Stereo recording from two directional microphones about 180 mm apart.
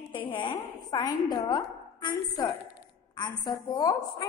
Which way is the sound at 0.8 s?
25° left (ahead or behind).